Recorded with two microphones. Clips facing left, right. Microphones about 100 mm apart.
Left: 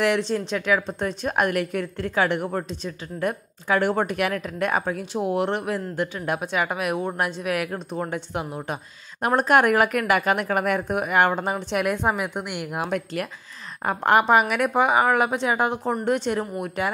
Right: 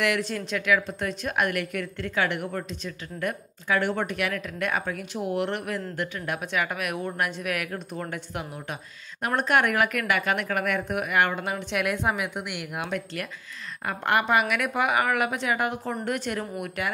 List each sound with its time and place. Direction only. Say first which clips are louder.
0.0 s a woman's voice: left 4 dB; 30° left (ahead or behind)